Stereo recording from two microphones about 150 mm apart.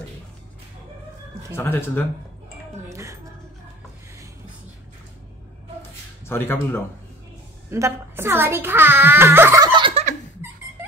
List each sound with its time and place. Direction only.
1.5 s speech: 15° left (ahead or behind)
2.9 s music: 20° right (ahead or behind)
5.8 s a sound: 15° left (ahead or behind)
7.7 s a child's voice: 15° right (ahead or behind)
9.6 s giggle: 30° right (ahead or behind)